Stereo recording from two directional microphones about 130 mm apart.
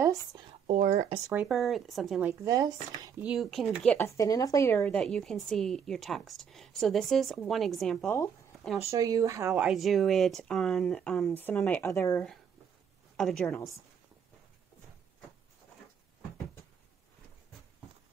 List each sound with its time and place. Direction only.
0.7 s speech: 70° right (ahead or behind)
1.5 s a woman's voice: centre (ahead or behind)
2.4 s speech: 30° right (ahead or behind)
3.2 s a woman's voice: 5° right (ahead or behind)
4.0 s speech: 25° left (ahead or behind)
4.8 s a woman's voice: 5° left (ahead or behind)
8.9 s speech: 25° right (ahead or behind)
9.5 s a woman's voice: centre (ahead or behind); by 12.2 s 20° left (ahead or behind)
13.1 s a woman's voice: 5° left (ahead or behind)